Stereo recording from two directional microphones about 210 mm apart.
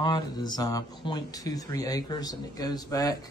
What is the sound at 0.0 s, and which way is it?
Speech, 20° left (ahead or behind).